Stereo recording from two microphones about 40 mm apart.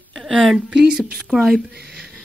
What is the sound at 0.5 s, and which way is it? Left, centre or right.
Speech, centre.